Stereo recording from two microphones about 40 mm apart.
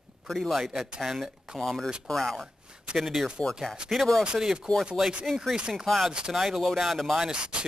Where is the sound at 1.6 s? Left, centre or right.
Centre.